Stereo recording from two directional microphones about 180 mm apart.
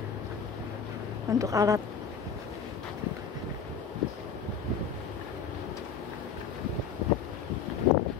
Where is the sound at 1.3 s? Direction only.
20° right (ahead or behind).